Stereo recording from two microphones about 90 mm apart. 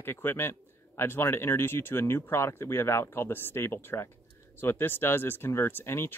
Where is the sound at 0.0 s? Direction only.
25° left (ahead or behind).